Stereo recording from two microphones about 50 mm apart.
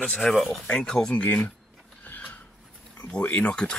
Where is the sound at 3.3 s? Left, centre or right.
Centre.